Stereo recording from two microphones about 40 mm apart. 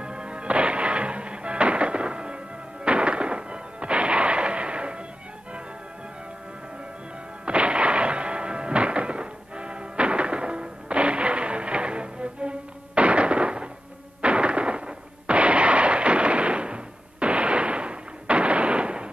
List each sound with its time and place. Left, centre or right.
0.0 s music: right
7.4 s music: right
14.2 s gunshot: right